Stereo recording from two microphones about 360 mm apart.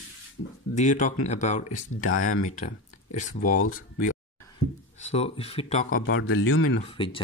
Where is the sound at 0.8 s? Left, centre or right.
Left.